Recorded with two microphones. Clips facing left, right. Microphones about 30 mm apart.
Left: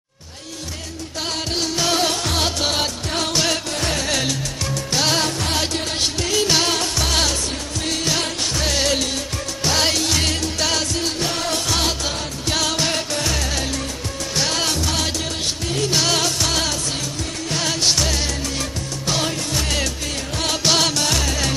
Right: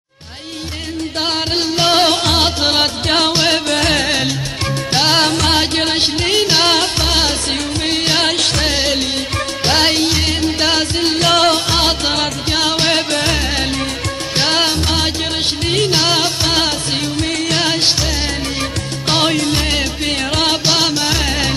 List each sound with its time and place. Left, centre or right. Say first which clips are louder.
1.8 s music: right 8 dB; right
3.7 s music: right 8 dB; right
4.9 s music: right 6 dB; right
5.2 s music: right 7 dB; right
6.6 s music: right 7 dB; right
8.3 s music: right 8 dB; right
8.6 s music: right 4 dB; right
11.1 s music: right 11 dB; right
11.5 s music: right 6 dB; right
19.0 s music: right 8 dB; right
20.6 s music: right 3 dB; right